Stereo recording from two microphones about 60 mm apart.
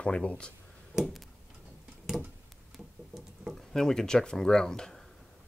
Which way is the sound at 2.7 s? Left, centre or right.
Centre.